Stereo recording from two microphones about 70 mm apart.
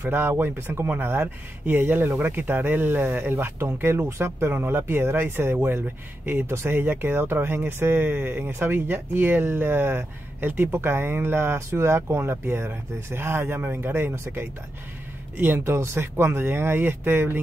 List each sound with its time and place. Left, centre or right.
0.0 s speech: right
15.6 s speech: right